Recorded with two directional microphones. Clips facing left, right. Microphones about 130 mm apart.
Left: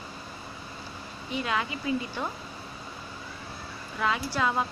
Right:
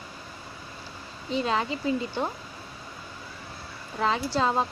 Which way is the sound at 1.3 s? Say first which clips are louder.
Right 4 dB; 30° right (ahead or behind).